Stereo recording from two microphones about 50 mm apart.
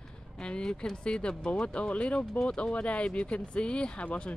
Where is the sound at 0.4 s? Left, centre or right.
Centre.